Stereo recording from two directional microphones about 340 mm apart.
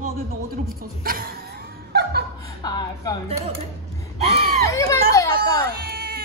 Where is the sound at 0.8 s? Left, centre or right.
Right.